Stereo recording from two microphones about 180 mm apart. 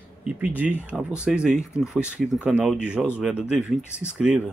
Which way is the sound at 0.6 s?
10° right (ahead or behind).